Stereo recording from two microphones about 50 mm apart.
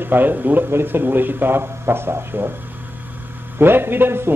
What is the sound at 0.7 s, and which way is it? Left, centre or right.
Speech, right.